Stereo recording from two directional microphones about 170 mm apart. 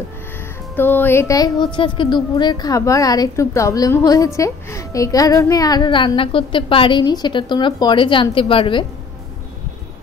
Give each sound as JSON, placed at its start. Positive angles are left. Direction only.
{"t": 0.7, "sound": "a woman's voice", "side_deg": 10}